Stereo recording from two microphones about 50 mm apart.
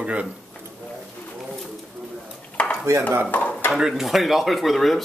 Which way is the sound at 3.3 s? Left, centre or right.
Left.